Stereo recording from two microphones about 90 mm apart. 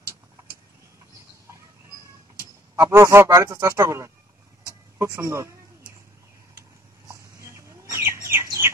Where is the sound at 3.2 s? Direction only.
45° right (ahead or behind).